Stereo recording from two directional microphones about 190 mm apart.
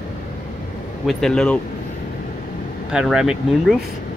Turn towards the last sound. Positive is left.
turn(degrees=0)  # may be behind; listen again after turning